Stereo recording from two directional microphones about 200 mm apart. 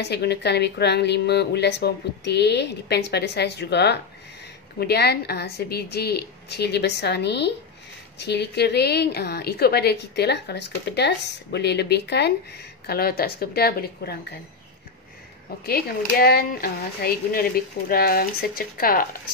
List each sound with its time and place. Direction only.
0.0 s a woman's voice: 55° left (ahead or behind)
15.6 s speech: 50° left (ahead or behind)